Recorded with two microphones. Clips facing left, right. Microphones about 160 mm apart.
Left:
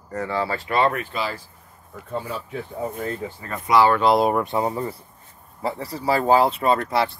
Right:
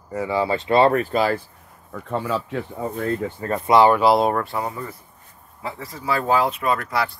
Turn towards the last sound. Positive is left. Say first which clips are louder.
# left 2 dB
turn(degrees=25)  # may be behind; listen again after turning